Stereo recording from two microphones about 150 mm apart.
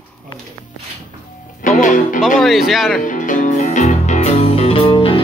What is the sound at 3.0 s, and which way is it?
Music, 60° left (ahead or behind).